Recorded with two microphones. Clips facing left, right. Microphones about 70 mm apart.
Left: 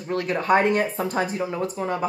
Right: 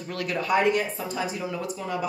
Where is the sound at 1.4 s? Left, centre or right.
Left.